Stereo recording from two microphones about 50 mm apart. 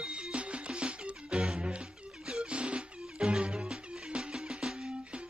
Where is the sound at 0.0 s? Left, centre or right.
Right.